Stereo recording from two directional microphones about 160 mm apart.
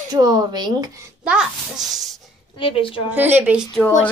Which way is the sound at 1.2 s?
5° right (ahead or behind).